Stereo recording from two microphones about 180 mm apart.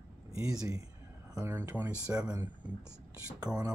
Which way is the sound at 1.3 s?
15° right (ahead or behind).